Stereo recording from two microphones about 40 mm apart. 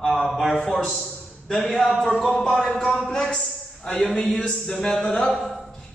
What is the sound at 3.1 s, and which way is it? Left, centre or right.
A man's voice, centre.